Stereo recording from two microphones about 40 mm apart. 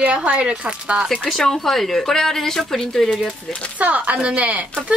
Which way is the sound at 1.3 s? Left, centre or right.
Centre.